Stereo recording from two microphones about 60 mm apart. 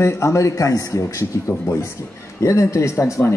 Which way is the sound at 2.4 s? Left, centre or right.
Left.